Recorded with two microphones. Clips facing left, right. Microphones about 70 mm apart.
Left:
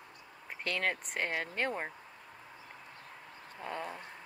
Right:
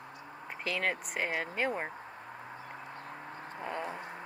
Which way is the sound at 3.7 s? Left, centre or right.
Centre.